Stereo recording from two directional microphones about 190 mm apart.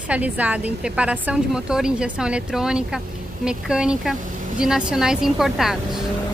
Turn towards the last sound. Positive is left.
turn(degrees=0)  # may be behind; listen again after turning